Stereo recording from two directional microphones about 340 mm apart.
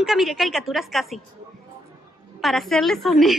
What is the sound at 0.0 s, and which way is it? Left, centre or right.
A woman's voice, centre.